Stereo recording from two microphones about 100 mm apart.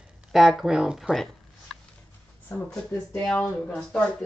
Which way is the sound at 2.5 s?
10° left (ahead or behind).